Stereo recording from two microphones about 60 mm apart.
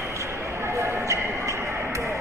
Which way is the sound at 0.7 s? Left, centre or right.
Right.